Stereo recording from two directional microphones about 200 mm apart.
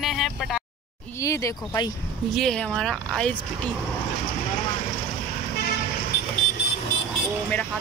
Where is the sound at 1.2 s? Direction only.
15° left (ahead or behind).